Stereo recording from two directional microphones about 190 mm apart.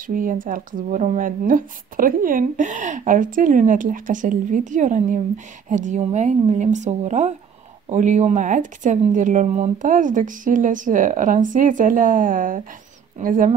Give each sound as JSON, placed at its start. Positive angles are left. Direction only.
{"t": 0.0, "sound": "speech", "side_deg": -45}